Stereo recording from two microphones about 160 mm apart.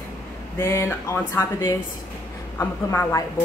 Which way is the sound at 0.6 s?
15° left (ahead or behind).